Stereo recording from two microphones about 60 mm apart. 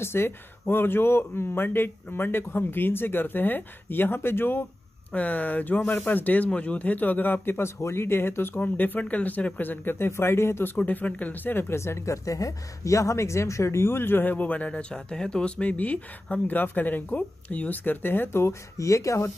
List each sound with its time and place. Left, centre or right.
0.0 s speech: left
5.1 s speech: left
8.5 s speech: left
10.8 s speech: left
18.8 s speech: left